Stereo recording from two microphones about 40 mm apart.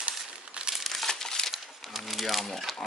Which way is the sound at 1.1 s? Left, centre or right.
Centre.